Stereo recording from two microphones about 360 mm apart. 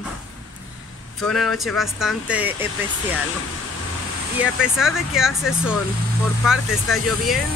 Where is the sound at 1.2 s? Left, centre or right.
Centre.